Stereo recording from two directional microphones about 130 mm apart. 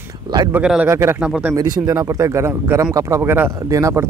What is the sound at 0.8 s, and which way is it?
Speech, 20° right (ahead or behind).